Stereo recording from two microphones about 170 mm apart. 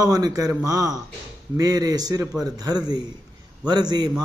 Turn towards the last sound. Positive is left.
turn(degrees=-25)  # may be behind; listen again after turning